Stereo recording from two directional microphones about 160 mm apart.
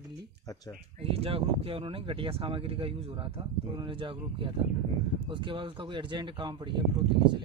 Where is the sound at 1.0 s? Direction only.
35° right (ahead or behind).